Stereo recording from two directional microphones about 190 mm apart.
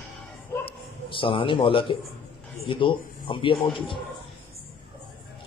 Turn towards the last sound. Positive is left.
turn(degrees=25)  # may be behind; listen again after turning